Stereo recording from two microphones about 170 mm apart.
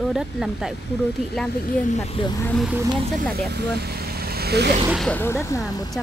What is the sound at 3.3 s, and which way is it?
Speech, 70° right (ahead or behind).